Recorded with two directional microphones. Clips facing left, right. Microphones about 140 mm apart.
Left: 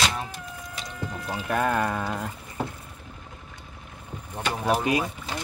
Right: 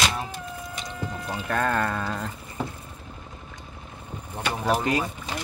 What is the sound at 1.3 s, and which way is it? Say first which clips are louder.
Speech: left 1 dB; 15° left (ahead or behind).